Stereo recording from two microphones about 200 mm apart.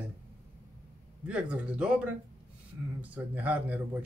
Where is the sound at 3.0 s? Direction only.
10° right (ahead or behind).